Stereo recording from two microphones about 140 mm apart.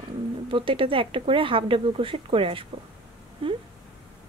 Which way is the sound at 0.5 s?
40° right (ahead or behind).